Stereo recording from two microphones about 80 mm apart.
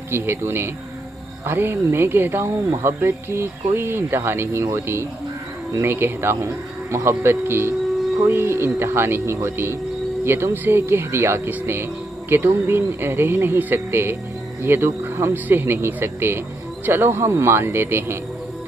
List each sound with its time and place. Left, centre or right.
0.1 s speech: right
15.3 s speech: right